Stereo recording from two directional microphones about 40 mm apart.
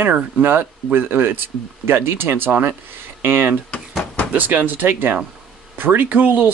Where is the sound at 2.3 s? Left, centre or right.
Right.